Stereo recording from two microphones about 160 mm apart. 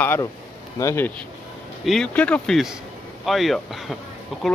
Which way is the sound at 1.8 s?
5° left (ahead or behind).